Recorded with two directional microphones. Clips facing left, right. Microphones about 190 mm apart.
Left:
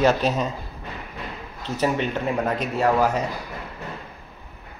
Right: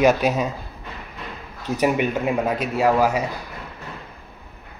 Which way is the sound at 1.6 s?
15° right (ahead or behind).